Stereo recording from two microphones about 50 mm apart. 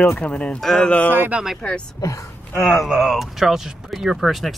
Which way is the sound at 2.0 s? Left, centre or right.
Left.